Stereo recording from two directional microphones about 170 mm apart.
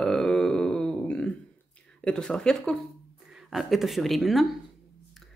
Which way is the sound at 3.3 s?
Centre (ahead or behind).